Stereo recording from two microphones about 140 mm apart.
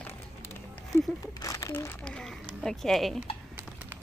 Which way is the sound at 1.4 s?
25° left (ahead or behind).